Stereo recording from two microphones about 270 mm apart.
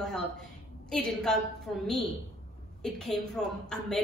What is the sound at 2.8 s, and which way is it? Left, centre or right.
A woman's voice, centre.